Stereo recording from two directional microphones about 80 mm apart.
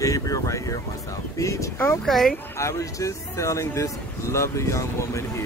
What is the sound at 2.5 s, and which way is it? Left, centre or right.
Speech, left.